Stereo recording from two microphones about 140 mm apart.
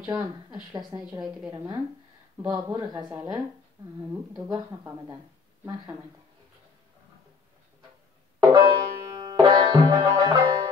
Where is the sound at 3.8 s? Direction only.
25° right (ahead or behind).